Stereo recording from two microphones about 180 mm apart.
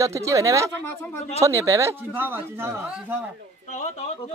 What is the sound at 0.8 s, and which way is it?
Speech, 10° left (ahead or behind).